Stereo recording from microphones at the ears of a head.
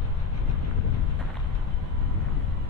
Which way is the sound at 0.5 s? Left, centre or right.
Left.